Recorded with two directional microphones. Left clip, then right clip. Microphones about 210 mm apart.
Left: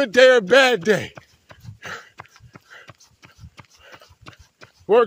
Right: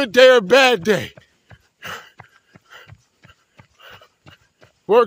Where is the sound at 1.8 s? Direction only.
25° right (ahead or behind).